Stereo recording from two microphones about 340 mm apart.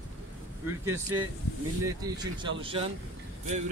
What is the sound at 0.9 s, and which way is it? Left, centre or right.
A man's voice, centre.